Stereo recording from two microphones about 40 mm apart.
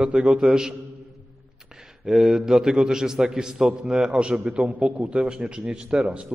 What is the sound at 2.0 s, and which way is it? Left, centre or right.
A man's voice, centre.